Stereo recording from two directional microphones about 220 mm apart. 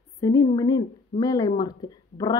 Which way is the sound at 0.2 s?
15° left (ahead or behind).